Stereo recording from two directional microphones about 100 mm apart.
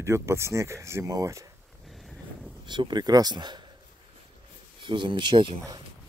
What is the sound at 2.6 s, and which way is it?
Speech, 50° right (ahead or behind).